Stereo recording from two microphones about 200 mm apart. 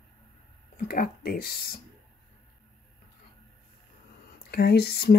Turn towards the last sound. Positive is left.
turn(degrees=50)  # may be behind; listen again after turning